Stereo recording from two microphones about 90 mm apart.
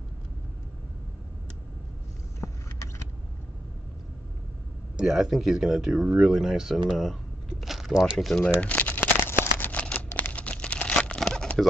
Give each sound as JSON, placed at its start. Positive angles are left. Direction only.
{"t": 2.4, "sound": "vehicle", "side_deg": 25}
{"t": 4.9, "sound": "speech", "side_deg": -5}
{"t": 6.3, "sound": "speech", "side_deg": -5}
{"t": 8.5, "sound": "crumpling", "side_deg": 15}
{"t": 9.6, "sound": "a sound", "side_deg": 15}